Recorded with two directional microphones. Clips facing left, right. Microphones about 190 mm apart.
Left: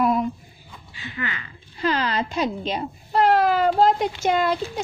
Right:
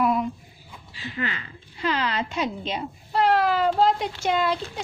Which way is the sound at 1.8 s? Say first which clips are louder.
Left 3 dB; 40° left (ahead or behind).